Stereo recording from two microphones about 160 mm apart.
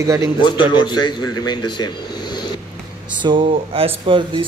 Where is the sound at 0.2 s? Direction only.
30° left (ahead or behind).